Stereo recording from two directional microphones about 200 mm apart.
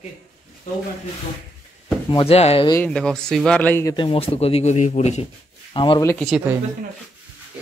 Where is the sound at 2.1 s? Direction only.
30° left (ahead or behind).